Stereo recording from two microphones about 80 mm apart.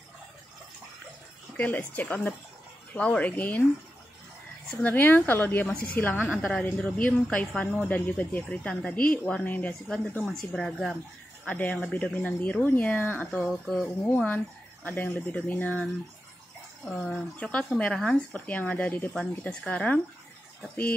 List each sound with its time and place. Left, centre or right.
1.6 s speech: centre
4.6 s speech: centre
10.2 s speech: centre
11.4 s speech: centre
13.5 s speech: centre
14.2 s speech: centre
16.9 s speech: centre